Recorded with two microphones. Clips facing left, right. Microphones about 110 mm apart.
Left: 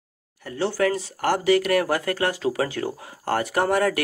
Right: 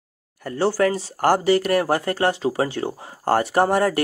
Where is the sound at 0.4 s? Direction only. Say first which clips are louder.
Right 3 dB; 40° right (ahead or behind).